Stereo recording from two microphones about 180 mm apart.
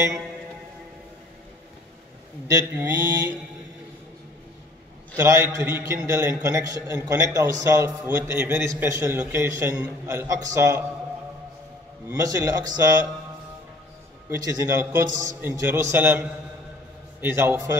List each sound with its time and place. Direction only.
2.4 s mantra: 15° right (ahead or behind)
5.1 s a man's voice: 15° right (ahead or behind)
12.1 s mantra: 20° right (ahead or behind)
14.3 s a man's voice: 15° right (ahead or behind)